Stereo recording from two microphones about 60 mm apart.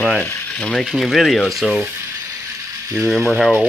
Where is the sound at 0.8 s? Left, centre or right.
Centre.